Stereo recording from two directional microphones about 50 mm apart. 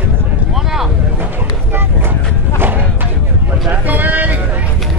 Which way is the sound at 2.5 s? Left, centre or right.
Right.